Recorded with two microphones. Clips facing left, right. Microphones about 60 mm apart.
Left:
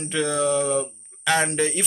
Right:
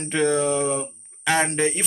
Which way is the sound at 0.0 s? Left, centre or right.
Right.